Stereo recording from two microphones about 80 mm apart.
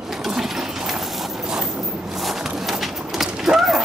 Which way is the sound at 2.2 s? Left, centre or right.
Centre.